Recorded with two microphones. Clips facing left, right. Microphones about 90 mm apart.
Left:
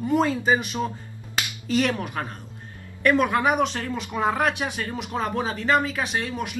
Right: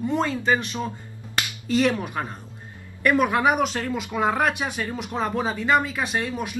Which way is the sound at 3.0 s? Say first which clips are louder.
Right 1 dB; 10° right (ahead or behind).